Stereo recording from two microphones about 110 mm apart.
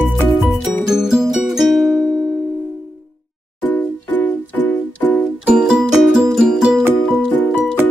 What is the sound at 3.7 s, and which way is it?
Music, 15° left (ahead or behind).